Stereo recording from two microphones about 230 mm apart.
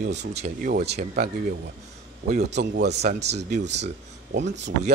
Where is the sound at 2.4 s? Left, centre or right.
Right.